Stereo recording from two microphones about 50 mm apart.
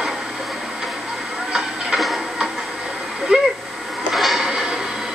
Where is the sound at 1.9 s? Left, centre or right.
Centre.